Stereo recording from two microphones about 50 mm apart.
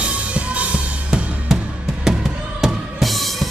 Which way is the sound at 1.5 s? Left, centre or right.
Centre.